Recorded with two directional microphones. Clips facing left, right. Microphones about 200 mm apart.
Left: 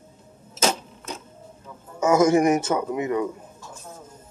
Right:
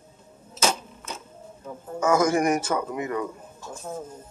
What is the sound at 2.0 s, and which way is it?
A man's voice, 25° left (ahead or behind).